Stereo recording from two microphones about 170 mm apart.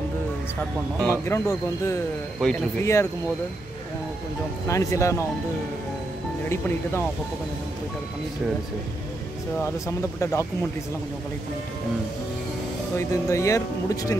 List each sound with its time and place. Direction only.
1.0 s speech: 15° left (ahead or behind)
4.6 s speech: 20° left (ahead or behind)
9.6 s speech: 15° left (ahead or behind)
12.9 s speech: 20° left (ahead or behind)